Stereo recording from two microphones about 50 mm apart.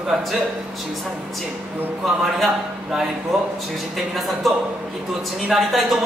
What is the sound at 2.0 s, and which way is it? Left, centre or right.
A man's voice, centre.